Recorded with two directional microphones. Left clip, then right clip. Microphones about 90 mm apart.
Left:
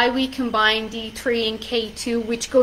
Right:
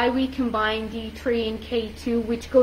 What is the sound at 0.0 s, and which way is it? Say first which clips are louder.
A woman's voice: left 3 dB; 5° left (ahead or behind).